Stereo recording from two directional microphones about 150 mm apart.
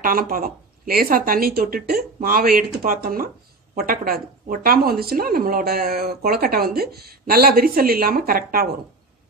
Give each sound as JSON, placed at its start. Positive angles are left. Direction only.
{"t": 0.0, "sound": "speech", "side_deg": -70}
{"t": 3.7, "sound": "a woman's voice", "side_deg": -85}